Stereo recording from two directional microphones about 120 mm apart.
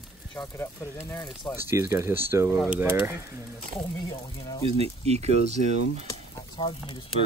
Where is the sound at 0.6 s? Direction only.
20° left (ahead or behind).